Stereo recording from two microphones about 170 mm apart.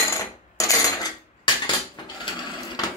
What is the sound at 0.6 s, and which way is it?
Cutlery, 20° left (ahead or behind).